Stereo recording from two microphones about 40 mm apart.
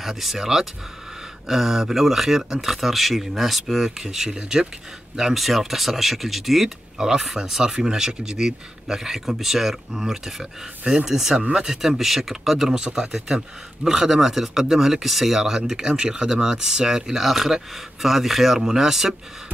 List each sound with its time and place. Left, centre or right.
0.0 s speech: centre
10.8 s speech: right
11.1 s speech: centre